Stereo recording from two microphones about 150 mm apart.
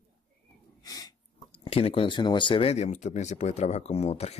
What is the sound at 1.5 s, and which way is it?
Speech, 40° left (ahead or behind).